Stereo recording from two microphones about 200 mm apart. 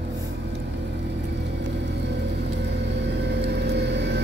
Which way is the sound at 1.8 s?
60° right (ahead or behind).